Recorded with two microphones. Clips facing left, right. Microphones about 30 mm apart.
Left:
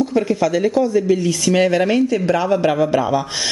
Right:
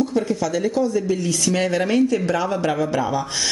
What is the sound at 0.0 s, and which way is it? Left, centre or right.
Speech, centre.